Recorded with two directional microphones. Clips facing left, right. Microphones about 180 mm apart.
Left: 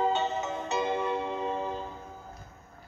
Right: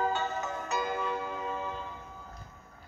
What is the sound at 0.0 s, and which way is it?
Music, 20° left (ahead or behind).